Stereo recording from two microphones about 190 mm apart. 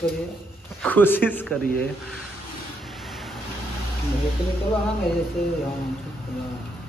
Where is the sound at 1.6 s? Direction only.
50° left (ahead or behind).